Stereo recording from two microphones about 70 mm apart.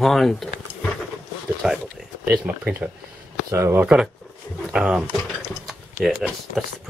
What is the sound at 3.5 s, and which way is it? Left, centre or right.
Speech, right.